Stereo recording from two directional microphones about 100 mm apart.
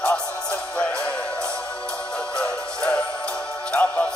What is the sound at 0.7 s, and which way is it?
Music, 10° left (ahead or behind).